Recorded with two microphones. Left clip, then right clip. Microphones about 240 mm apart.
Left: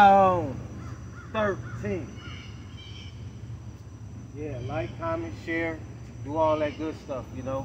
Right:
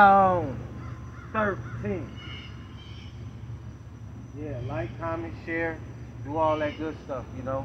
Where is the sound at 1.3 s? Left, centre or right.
Left.